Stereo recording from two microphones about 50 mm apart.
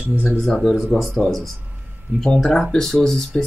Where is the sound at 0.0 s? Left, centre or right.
Right.